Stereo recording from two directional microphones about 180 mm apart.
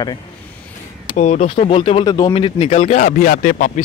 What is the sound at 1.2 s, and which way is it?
Speech, 40° left (ahead or behind).